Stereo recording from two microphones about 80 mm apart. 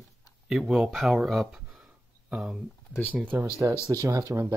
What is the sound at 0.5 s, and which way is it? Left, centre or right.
Speech, centre.